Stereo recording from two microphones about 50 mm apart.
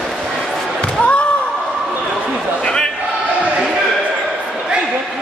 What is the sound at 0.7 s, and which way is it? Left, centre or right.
Slam, left.